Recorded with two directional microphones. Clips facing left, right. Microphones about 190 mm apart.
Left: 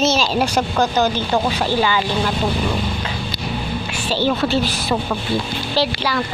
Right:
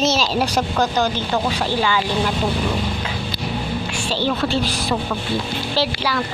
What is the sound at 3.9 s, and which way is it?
A woman's voice, 5° left (ahead or behind).